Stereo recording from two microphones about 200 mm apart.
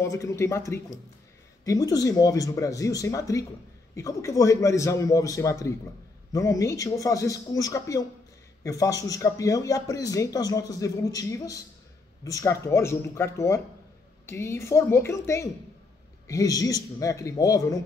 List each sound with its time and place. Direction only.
0.1 s speech: 15° left (ahead or behind)